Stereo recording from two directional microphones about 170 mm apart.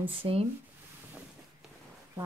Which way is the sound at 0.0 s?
35° right (ahead or behind).